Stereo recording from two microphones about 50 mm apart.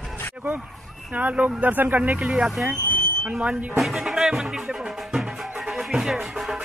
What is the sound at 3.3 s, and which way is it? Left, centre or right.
Speech, right.